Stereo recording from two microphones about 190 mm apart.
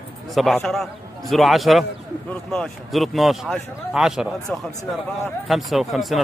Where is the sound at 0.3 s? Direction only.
Centre (ahead or behind).